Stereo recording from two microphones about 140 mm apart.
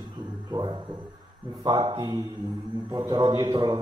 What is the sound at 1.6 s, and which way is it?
A man's voice, 35° right (ahead or behind).